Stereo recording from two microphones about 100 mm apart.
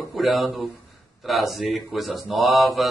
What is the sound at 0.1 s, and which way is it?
Speech, centre (ahead or behind).